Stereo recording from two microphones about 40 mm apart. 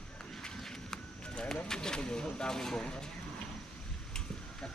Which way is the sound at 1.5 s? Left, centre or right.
Centre.